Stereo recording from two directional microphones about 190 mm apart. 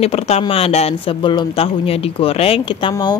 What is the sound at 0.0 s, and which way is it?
Speech, 30° left (ahead or behind).